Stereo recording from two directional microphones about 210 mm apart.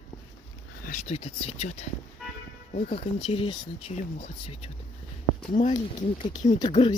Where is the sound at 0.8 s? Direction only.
35° left (ahead or behind).